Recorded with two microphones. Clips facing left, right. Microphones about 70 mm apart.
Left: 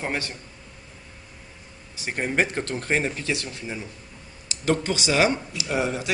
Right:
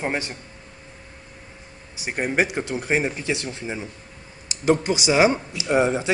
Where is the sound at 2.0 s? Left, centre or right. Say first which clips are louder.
Right 2 dB; centre.